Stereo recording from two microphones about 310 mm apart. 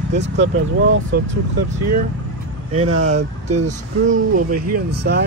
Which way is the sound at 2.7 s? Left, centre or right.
Right.